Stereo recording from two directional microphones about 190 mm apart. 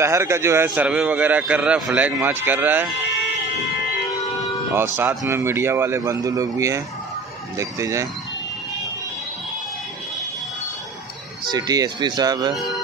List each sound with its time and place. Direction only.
0.0 s a man's voice: 15° right (ahead or behind)
4.7 s a man's voice: 10° right (ahead or behind)
11.4 s speech: 20° right (ahead or behind)